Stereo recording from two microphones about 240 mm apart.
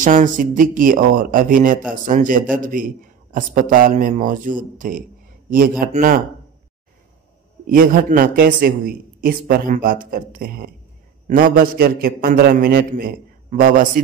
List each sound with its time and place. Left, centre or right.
0.0 s a man's voice: right
7.6 s a man's voice: right